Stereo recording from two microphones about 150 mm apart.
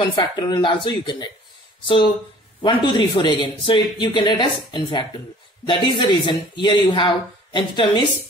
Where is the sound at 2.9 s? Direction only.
30° left (ahead or behind).